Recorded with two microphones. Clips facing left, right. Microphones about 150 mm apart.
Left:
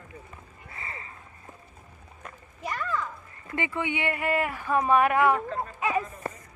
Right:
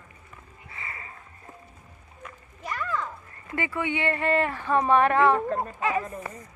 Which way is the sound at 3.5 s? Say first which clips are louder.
Right 1 dB; 20° left (ahead or behind).